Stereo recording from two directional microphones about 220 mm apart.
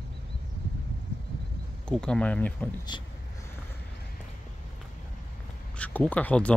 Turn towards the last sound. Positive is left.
turn(degrees=5)  # may be behind; listen again after turning